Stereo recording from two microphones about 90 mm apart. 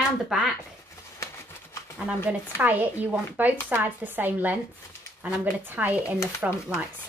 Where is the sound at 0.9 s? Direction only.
30° left (ahead or behind).